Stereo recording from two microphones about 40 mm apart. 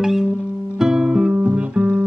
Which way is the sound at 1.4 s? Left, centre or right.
Right.